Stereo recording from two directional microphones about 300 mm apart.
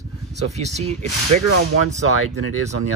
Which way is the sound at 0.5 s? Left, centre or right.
Right.